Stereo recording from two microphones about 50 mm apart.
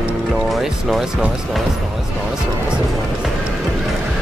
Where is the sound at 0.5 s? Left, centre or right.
Centre.